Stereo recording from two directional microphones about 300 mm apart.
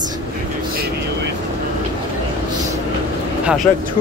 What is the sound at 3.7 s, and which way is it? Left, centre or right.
Speech, centre.